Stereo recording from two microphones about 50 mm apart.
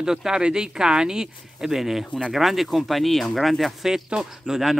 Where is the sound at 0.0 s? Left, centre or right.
Centre.